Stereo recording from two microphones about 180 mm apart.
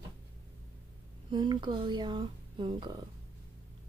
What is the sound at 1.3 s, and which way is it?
Speech, 25° right (ahead or behind).